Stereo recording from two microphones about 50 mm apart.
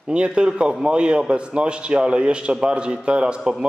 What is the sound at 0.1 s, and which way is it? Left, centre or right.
A man's voice, right.